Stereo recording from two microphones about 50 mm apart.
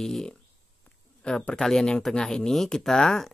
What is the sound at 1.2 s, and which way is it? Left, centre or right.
Speech, left.